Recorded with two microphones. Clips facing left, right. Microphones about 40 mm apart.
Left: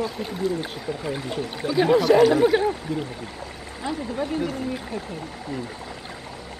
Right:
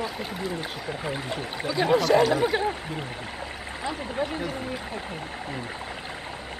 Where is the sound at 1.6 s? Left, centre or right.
Centre.